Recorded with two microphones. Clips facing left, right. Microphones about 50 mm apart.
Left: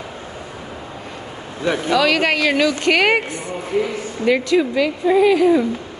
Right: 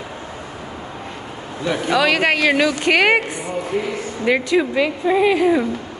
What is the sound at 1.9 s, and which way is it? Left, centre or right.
A woman's voice, centre.